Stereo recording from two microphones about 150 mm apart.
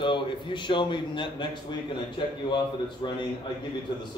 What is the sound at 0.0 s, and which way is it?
A man's voice, 35° left (ahead or behind).